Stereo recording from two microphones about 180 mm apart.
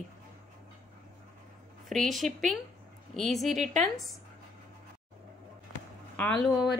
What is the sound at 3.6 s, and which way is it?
Speech, 40° right (ahead or behind).